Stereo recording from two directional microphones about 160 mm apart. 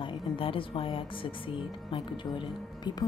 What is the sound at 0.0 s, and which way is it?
A woman's voice, 35° left (ahead or behind).